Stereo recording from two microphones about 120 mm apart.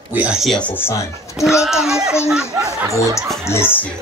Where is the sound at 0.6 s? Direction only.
15° left (ahead or behind).